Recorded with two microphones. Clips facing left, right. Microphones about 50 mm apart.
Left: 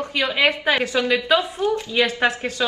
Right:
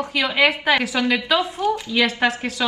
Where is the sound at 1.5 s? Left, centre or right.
Left.